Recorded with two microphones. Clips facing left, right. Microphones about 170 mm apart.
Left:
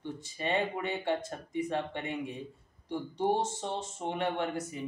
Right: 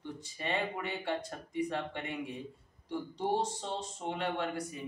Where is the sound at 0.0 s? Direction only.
20° left (ahead or behind).